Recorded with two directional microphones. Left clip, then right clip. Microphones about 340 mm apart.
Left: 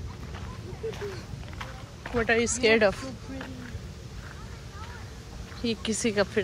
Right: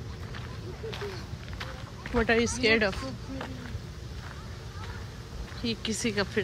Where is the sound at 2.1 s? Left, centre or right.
Centre.